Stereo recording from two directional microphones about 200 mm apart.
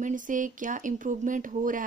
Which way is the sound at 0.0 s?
40° right (ahead or behind).